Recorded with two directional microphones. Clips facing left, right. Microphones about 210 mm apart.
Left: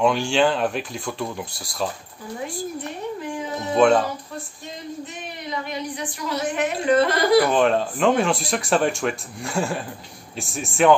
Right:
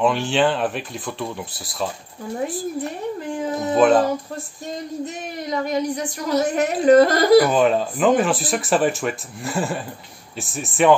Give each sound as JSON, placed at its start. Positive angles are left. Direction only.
{"t": 0.0, "sound": "speech", "side_deg": 0}
{"t": 3.7, "sound": "speech", "side_deg": 0}
{"t": 5.0, "sound": "a woman's voice", "side_deg": -45}
{"t": 7.4, "sound": "speech", "side_deg": -5}